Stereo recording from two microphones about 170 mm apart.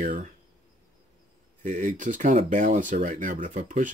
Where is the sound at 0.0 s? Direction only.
50° right (ahead or behind).